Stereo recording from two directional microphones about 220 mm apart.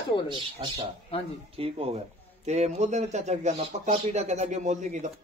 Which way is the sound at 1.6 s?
25° right (ahead or behind).